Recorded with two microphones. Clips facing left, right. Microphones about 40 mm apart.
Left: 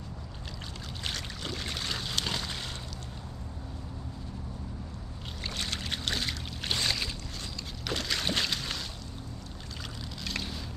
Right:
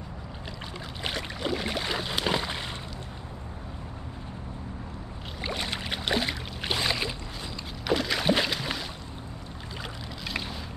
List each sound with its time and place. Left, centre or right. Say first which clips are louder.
1.0 s boat: right 6 dB; centre
5.4 s boat: right 4 dB; centre
7.8 s rowboat: right 7 dB; centre
10.2 s boat: right 3 dB; centre